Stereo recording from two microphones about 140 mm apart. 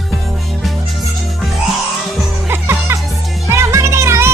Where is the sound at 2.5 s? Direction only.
15° right (ahead or behind).